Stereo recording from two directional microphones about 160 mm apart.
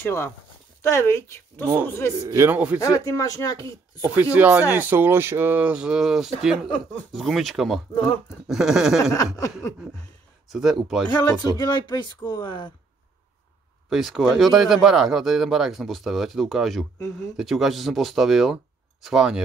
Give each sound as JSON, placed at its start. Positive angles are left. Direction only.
{"t": 0.0, "sound": "a woman's voice", "side_deg": 15}
{"t": 2.1, "sound": "a man's voice", "side_deg": -20}
{"t": 2.8, "sound": "speech", "side_deg": 20}
{"t": 4.0, "sound": "speech", "side_deg": -10}
{"t": 9.1, "sound": "speech", "side_deg": 20}
{"t": 10.5, "sound": "speech", "side_deg": 0}
{"t": 11.1, "sound": "speech", "side_deg": 25}
{"t": 13.8, "sound": "speech", "side_deg": 0}